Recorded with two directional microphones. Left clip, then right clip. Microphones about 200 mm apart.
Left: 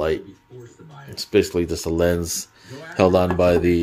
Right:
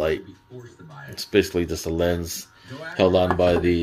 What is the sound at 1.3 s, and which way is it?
Speech, 20° left (ahead or behind).